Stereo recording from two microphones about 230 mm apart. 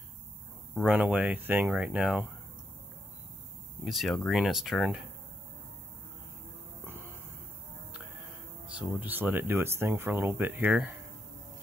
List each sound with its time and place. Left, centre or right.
0.7 s speech: centre
3.8 s speech: centre
8.7 s speech: centre